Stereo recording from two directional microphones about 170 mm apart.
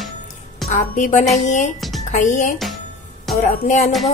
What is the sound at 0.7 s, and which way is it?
Speech, 45° left (ahead or behind).